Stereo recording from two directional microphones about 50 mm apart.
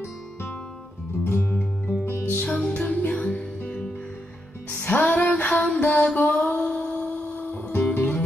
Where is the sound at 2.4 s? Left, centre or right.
Left.